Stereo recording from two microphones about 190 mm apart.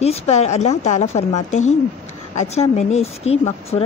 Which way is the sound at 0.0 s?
35° left (ahead or behind).